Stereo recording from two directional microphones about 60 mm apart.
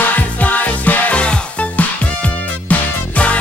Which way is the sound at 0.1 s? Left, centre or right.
Left.